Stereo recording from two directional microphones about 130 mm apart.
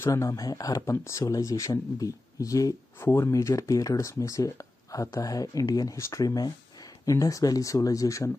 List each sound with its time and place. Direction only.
0.0 s speech: 25° left (ahead or behind)